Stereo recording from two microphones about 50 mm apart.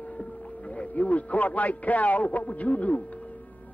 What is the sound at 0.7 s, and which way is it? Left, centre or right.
A man's voice, left.